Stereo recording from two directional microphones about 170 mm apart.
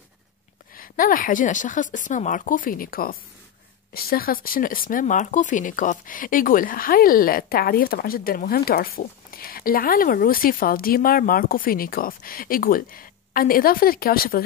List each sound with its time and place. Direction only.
0.7 s speech: 55° left (ahead or behind)